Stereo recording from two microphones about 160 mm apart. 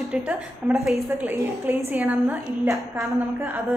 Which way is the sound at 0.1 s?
5° right (ahead or behind).